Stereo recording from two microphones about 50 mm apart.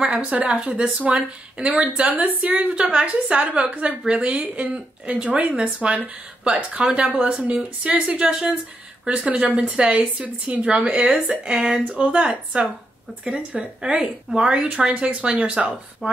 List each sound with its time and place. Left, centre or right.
0.0 s a woman's voice: centre